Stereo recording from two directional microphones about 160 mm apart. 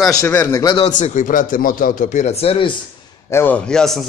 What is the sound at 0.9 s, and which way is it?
Speech, 50° left (ahead or behind).